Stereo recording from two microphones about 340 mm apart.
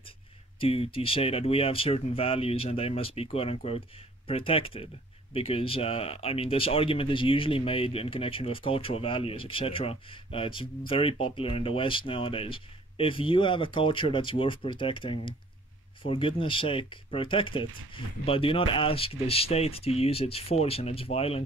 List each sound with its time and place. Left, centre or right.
0.6 s speech: centre